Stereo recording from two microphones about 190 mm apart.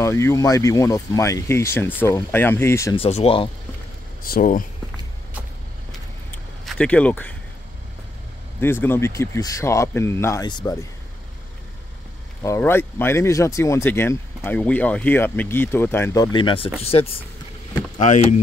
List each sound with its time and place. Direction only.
0.0 s speech: 15° left (ahead or behind)
3.0 s speech: 30° left (ahead or behind)
4.2 s speech: 45° left (ahead or behind)
5.9 s vehicle: centre (ahead or behind)
8.5 s speech: 10° left (ahead or behind)
12.4 s speech: 15° left (ahead or behind); by 17.2 s 30° left (ahead or behind)